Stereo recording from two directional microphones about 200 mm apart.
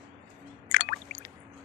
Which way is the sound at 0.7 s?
50° left (ahead or behind).